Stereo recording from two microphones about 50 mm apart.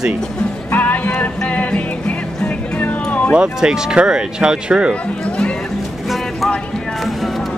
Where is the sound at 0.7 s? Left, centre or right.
Left.